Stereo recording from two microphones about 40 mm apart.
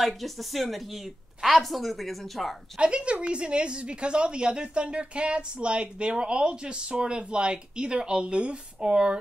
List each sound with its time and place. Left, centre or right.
0.0 s a woman's voice: centre
2.8 s a woman's voice: right